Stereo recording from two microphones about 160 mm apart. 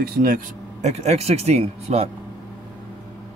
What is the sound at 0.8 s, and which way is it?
A man's voice, 45° right (ahead or behind).